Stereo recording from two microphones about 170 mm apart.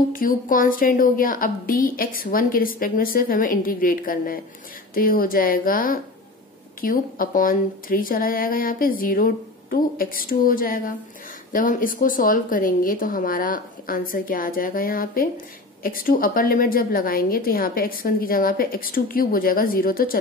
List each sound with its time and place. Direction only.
0.1 s a woman's voice: 55° left (ahead or behind)